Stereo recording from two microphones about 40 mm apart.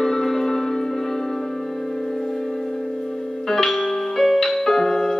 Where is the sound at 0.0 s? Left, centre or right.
Centre.